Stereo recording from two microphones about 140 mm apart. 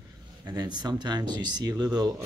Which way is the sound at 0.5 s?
30° right (ahead or behind).